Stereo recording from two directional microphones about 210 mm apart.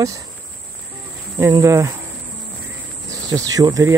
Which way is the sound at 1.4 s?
15° right (ahead or behind).